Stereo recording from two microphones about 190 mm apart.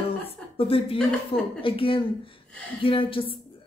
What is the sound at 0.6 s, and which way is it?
Speech, 30° left (ahead or behind).